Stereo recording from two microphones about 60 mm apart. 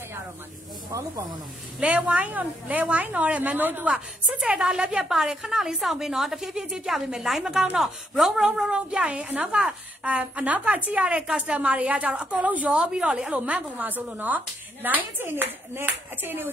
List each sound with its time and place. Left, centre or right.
1.8 s speech: right
4.6 s a woman's voice: centre
12.9 s speech: centre; by 16.4 s right